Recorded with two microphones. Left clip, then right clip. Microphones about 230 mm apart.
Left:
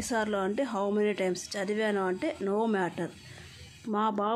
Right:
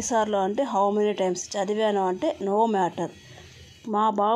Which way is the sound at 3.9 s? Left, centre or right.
Centre.